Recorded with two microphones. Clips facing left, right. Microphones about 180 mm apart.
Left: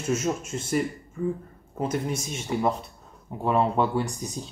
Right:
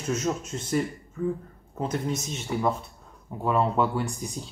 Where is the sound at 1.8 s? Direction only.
10° left (ahead or behind).